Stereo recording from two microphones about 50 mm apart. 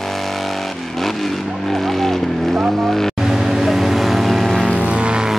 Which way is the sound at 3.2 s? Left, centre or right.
Centre.